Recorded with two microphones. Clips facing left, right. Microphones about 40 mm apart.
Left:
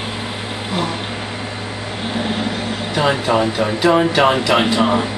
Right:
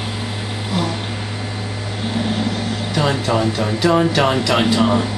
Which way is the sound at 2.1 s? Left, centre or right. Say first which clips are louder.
Even; centre.